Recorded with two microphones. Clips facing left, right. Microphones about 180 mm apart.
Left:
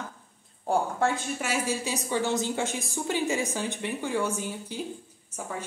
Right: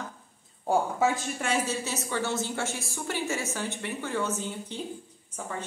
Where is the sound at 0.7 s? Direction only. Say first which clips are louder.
Right 1 dB; centre (ahead or behind).